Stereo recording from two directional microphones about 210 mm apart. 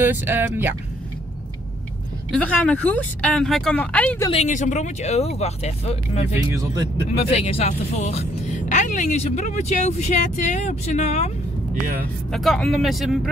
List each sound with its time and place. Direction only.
0.0 s speech: 10° right (ahead or behind)
2.3 s speech: 5° left (ahead or behind)
4.3 s speech: 35° left (ahead or behind)
6.5 s speech: 15° right (ahead or behind)
7.2 s speech: 30° left (ahead or behind)
12.3 s speech: centre (ahead or behind)